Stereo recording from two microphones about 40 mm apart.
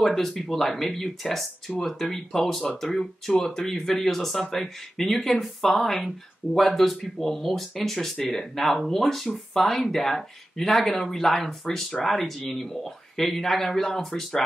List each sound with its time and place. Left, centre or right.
0.0 s speech: centre